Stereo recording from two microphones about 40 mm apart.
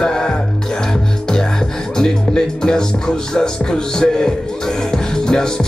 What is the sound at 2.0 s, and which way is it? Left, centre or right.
Music, centre.